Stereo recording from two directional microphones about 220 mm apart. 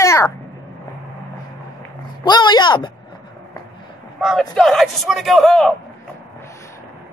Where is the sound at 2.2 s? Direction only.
20° left (ahead or behind).